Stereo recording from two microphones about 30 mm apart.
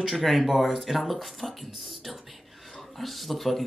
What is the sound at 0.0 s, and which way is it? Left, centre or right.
Speech, centre.